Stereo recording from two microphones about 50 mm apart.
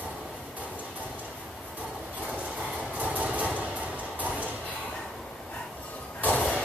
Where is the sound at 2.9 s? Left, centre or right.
Right.